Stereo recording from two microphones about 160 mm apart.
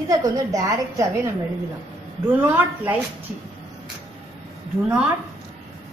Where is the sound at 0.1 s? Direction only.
20° right (ahead or behind).